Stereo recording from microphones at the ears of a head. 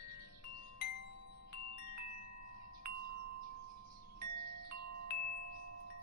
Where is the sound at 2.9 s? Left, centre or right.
Right.